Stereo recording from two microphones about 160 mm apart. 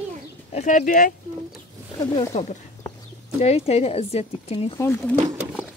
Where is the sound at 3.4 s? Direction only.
40° left (ahead or behind).